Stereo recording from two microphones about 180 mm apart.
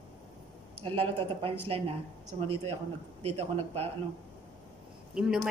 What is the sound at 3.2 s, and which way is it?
Speech, 35° right (ahead or behind).